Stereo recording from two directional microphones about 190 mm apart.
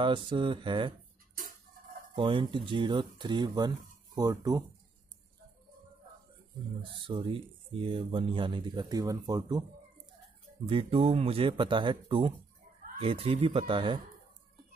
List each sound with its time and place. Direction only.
0.0 s speech: 25° right (ahead or behind)
2.1 s speech: 25° right (ahead or behind)
7.0 s speech: 25° right (ahead or behind)
10.7 s speech: 30° right (ahead or behind)